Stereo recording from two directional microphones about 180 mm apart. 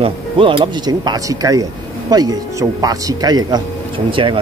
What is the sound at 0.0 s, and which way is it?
Speech, 30° right (ahead or behind).